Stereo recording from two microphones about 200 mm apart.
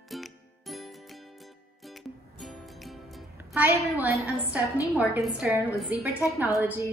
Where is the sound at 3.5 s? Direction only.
10° right (ahead or behind).